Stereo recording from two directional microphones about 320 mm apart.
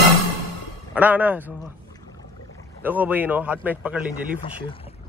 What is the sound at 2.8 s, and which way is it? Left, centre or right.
Speech, centre.